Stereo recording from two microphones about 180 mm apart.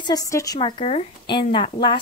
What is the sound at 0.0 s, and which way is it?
Speech, 20° left (ahead or behind).